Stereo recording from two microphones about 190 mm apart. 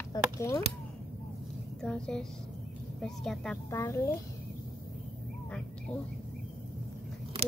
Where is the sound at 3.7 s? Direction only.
15° left (ahead or behind).